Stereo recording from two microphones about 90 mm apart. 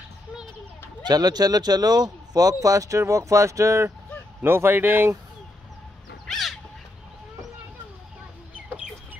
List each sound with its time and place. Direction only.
1.0 s speech: 50° right (ahead or behind); by 5.1 s 25° right (ahead or behind)
6.2 s crow: centre (ahead or behind)